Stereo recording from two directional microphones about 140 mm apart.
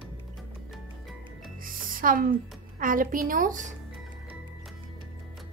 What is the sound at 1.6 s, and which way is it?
Music, 80° right.